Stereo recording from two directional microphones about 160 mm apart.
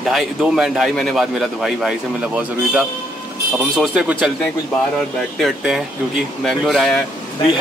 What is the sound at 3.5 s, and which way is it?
Speech, 5° right (ahead or behind).